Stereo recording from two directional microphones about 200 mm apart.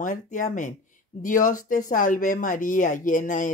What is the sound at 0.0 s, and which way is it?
Speech, 40° left (ahead or behind).